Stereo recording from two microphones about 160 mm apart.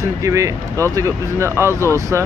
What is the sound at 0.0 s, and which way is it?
Speech, 20° right (ahead or behind).